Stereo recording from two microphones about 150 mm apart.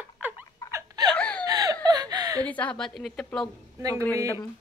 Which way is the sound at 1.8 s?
25° right (ahead or behind).